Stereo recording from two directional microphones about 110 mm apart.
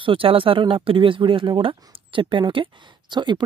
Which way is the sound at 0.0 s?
55° right (ahead or behind).